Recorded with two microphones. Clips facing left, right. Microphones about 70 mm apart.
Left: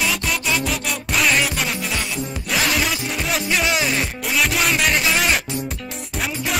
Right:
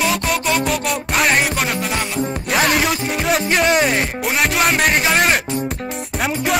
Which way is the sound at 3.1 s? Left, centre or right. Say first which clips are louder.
Right 5 dB; centre.